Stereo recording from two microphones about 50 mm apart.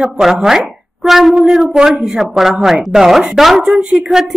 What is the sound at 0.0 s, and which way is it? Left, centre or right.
A woman's voice, centre.